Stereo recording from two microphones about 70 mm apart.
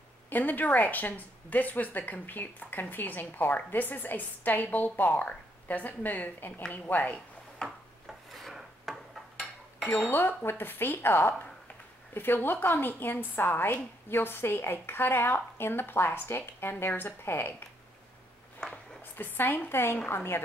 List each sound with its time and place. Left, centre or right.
0.3 s a woman's voice: left
7.6 s filing: centre
9.8 s speech: left
18.6 s a sound: centre
19.1 s a woman's voice: left